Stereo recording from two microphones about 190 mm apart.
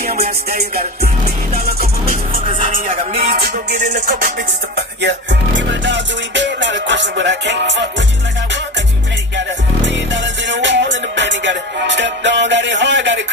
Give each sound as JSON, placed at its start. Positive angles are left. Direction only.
{"t": 0.5, "sound": "music", "side_deg": -55}
{"t": 5.0, "sound": "music", "side_deg": -70}
{"t": 9.4, "sound": "music", "side_deg": -70}